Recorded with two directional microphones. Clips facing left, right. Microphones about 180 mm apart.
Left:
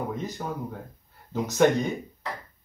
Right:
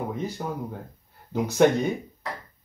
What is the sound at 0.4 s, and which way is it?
Speech, 10° right (ahead or behind).